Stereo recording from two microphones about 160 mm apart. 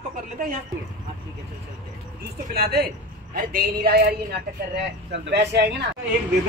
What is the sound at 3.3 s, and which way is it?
Speech, 70° right (ahead or behind).